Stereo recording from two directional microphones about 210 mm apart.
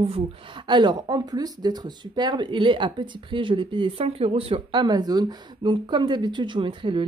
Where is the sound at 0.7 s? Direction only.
20° right (ahead or behind).